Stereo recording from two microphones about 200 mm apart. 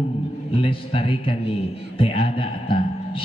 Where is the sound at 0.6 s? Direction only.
25° left (ahead or behind).